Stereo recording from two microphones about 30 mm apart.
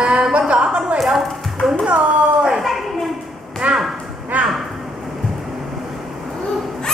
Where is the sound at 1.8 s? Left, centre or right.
Right.